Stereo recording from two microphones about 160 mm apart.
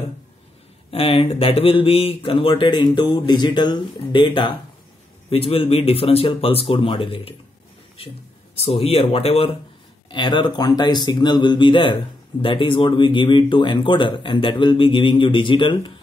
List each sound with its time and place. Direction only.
0.9 s speech: 35° left (ahead or behind)
8.5 s speech: 40° left (ahead or behind)